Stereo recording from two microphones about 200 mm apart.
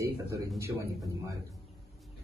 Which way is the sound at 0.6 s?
15° right (ahead or behind).